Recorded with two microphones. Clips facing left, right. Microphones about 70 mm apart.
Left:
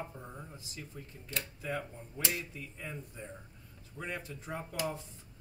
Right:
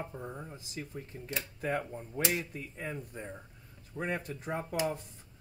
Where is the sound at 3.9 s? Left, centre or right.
Right.